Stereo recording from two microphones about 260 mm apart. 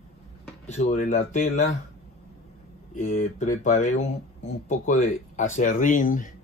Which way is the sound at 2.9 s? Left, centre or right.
Left.